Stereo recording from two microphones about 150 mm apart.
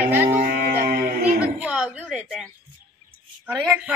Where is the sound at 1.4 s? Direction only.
5° right (ahead or behind).